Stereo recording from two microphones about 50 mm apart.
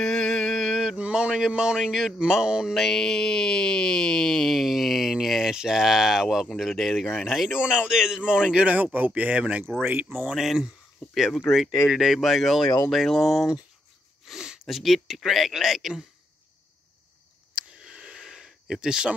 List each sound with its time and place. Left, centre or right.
0.0 s mantra: centre
0.9 s a sound: right
1.5 s speech: centre
2.7 s speech: centre
7.5 s a man's voice: centre
10.3 s speech: centre
17.6 s a sound: centre